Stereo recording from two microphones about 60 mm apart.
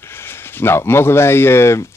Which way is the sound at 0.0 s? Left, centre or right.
Left.